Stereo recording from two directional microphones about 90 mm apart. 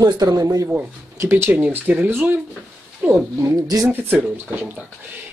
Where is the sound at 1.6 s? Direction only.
20° right (ahead or behind).